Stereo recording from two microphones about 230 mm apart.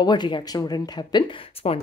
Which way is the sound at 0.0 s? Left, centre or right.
Centre.